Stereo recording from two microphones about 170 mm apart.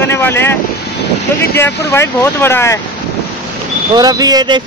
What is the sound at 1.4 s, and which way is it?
Speech, 15° left (ahead or behind).